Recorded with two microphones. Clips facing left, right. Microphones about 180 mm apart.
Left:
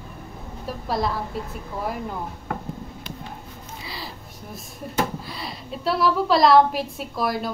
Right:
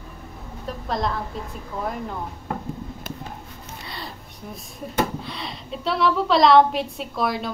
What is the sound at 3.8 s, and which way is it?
Music, centre (ahead or behind).